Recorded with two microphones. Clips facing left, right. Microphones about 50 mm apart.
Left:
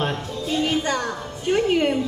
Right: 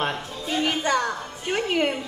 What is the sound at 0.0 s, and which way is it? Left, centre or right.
Music, right.